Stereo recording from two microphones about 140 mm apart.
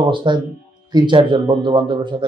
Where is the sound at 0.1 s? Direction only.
35° right (ahead or behind).